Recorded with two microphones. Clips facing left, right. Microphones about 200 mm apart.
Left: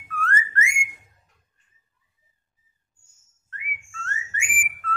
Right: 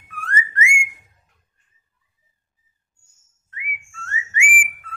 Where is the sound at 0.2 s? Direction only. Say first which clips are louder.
Right 1 dB; 15° right (ahead or behind).